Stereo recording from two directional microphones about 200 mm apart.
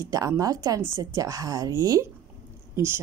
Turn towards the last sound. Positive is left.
turn(degrees=-10)  # may be behind; listen again after turning